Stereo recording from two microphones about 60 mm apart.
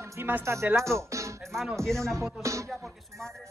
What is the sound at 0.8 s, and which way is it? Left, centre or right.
Music, right.